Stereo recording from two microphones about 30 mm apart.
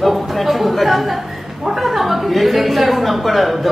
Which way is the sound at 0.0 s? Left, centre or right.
Centre.